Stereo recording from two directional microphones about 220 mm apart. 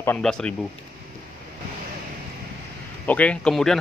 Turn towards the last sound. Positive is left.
turn(degrees=5)  # may be behind; listen again after turning